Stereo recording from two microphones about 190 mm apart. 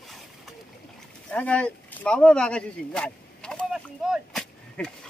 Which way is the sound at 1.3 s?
5° left (ahead or behind).